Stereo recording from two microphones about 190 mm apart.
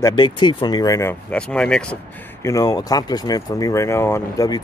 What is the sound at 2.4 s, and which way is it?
Speech, 20° left (ahead or behind).